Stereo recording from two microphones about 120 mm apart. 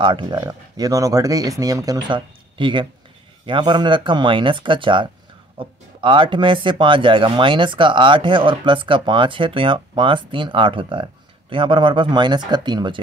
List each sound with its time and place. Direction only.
0.0 s speech: 45° right (ahead or behind)
0.4 s speech: 30° right (ahead or behind)